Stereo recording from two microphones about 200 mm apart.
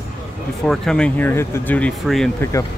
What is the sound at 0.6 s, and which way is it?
Speech, 5° left (ahead or behind).